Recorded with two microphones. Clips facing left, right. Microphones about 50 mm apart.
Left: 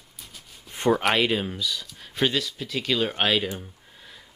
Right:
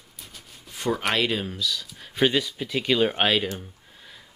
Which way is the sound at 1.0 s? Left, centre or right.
Centre.